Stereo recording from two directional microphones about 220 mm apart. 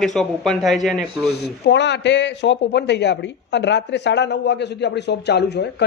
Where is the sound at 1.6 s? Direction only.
50° left (ahead or behind).